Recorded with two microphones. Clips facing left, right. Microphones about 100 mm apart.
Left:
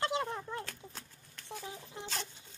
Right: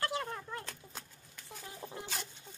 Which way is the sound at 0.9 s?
15° right (ahead or behind).